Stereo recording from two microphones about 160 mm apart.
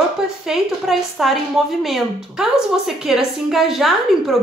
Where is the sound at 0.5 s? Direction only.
Centre (ahead or behind).